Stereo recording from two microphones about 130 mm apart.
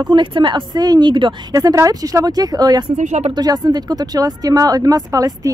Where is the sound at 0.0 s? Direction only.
40° right (ahead or behind).